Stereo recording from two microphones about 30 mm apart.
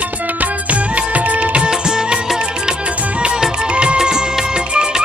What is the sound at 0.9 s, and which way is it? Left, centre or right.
Music, right.